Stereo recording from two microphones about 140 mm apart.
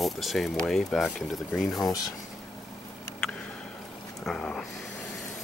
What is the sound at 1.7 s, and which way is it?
Speech, 25° left (ahead or behind).